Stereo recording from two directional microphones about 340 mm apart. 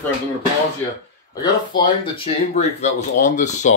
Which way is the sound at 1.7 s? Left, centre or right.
Centre.